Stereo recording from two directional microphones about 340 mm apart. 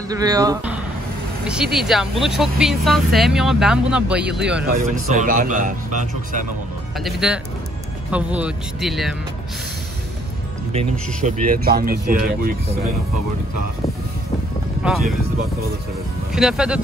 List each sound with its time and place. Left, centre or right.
0.1 s speech: centre
4.6 s speech: right
7.0 s speech: centre
10.7 s speech: centre
14.8 s speech: centre
16.3 s speech: centre